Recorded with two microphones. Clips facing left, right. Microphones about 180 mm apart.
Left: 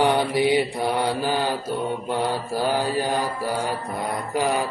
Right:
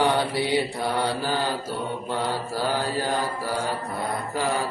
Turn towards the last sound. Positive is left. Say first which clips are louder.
# left 3 dB
turn(degrees=15)  # may be behind; listen again after turning